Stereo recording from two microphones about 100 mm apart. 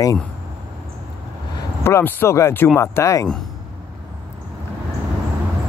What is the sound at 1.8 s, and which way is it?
Speech, 25° left (ahead or behind).